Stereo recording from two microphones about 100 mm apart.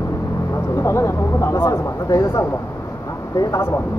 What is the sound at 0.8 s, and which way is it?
Speech, 30° left (ahead or behind).